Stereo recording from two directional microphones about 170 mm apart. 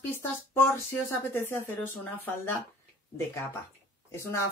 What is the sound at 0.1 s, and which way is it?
Speech, 15° left (ahead or behind).